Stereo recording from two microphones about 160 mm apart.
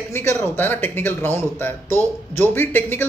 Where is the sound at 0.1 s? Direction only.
15° left (ahead or behind).